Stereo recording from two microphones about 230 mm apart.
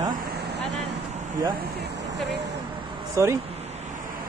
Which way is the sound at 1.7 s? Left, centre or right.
Right.